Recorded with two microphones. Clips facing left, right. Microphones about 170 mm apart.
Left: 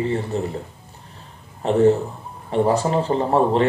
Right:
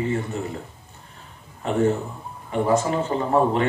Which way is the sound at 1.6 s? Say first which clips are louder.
Left 5 dB; 35° left (ahead or behind).